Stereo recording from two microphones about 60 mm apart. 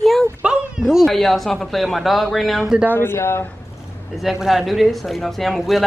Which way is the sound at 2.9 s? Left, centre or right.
Left.